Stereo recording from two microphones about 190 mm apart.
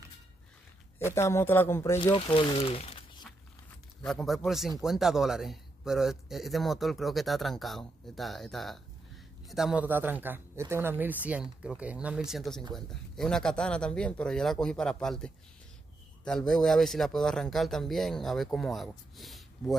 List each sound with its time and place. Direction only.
0.9 s speech: 15° left (ahead or behind)
2.1 s speech: 25° left (ahead or behind)
4.0 s a man's voice: centre (ahead or behind)